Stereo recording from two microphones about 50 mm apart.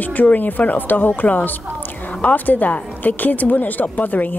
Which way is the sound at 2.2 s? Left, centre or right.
Left.